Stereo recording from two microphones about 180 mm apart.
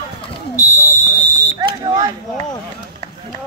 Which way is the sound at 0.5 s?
15° left (ahead or behind).